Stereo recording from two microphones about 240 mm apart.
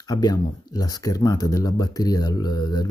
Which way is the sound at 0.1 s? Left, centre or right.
Centre.